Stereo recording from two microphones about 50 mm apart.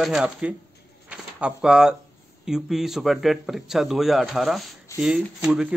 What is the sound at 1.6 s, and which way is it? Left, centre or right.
A man's voice, centre.